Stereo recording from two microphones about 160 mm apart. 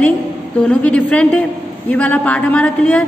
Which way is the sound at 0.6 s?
5° left (ahead or behind).